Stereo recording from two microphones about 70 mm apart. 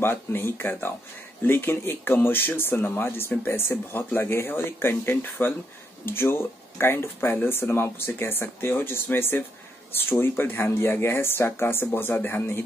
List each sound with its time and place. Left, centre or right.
0.0 s speech: left